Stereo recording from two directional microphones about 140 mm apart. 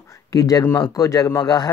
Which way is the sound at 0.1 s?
25° left (ahead or behind).